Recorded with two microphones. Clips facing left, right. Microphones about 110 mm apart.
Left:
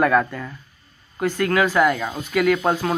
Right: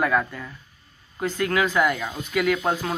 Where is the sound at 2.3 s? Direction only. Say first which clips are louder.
Left 4 dB; 20° right (ahead or behind).